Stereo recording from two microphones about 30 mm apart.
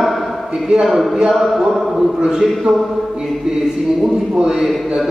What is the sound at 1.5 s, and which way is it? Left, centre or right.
Speech, centre.